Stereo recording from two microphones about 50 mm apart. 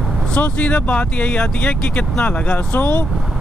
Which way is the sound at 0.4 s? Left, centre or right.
Left.